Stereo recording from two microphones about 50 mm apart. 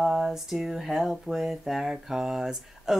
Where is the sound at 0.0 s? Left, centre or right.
Centre.